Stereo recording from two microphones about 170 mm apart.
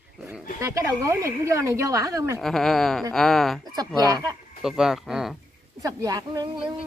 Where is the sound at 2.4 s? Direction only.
Centre (ahead or behind).